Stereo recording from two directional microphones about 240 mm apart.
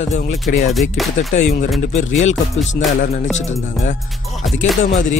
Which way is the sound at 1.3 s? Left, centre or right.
Left.